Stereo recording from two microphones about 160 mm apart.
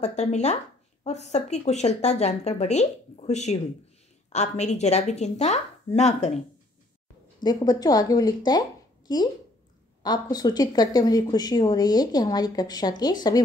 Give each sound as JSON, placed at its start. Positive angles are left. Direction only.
{"t": 0.0, "sound": "speech", "side_deg": 45}
{"t": 7.4, "sound": "speech", "side_deg": 25}